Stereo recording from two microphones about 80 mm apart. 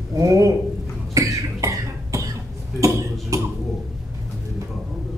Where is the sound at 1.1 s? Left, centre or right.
Right.